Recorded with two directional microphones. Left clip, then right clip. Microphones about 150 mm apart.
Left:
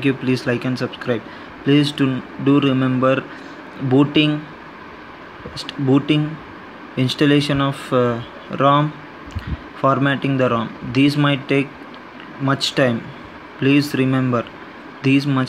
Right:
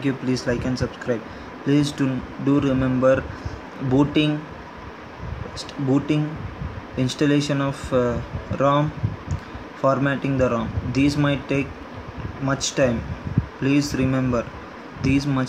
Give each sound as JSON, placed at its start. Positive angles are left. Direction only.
{"t": 0.0, "sound": "speech", "side_deg": 15}
{"t": 5.6, "sound": "speech", "side_deg": 20}